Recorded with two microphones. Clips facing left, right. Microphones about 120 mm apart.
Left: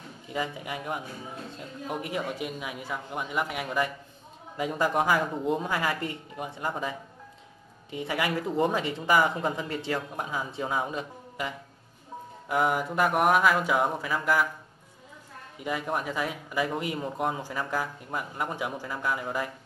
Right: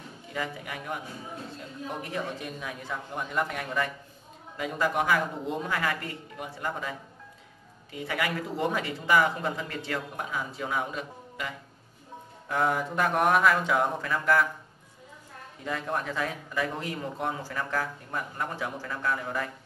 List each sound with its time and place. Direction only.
0.3 s speech: 20° left (ahead or behind)
4.6 s speech: 25° left (ahead or behind); by 14.5 s 5° left (ahead or behind)
15.6 s speech: 10° left (ahead or behind)